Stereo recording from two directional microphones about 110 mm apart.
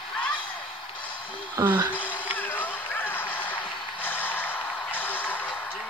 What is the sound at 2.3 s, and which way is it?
Music, 15° left (ahead or behind).